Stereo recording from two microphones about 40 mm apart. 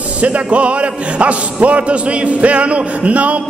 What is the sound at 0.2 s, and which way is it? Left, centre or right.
Speech, right.